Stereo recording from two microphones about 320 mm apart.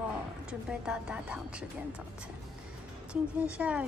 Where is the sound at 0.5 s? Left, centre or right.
Centre.